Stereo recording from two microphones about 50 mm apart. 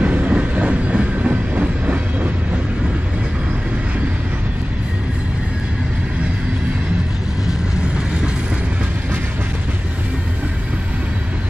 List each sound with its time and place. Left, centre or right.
0.0 s train: right